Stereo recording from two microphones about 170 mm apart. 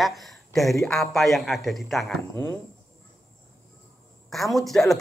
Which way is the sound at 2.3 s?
15° left (ahead or behind).